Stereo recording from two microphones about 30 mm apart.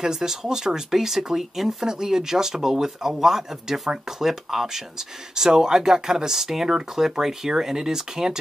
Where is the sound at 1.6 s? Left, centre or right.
Centre.